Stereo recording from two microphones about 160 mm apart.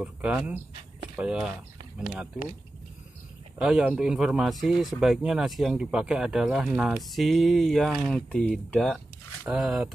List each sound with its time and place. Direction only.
0.0 s speech: 10° right (ahead or behind)
3.5 s speech: 5° right (ahead or behind)